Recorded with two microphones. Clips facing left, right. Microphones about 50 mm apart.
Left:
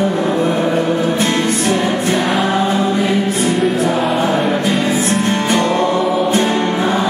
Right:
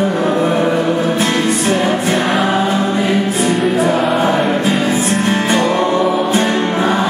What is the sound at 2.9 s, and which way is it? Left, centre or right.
Music, right.